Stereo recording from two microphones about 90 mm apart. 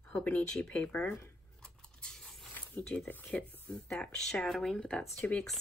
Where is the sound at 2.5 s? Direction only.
20° left (ahead or behind).